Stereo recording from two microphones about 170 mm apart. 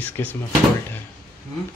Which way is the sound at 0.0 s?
10° left (ahead or behind).